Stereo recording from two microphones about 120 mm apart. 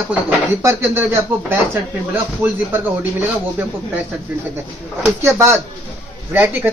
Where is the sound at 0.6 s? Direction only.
20° right (ahead or behind).